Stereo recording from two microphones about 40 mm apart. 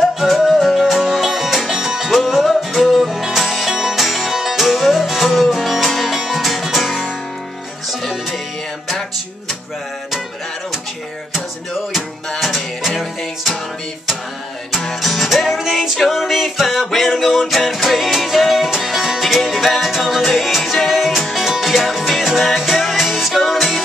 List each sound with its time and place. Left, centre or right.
0.0 s music: centre
2.0 s music: centre
11.3 s music: centre
15.0 s music: centre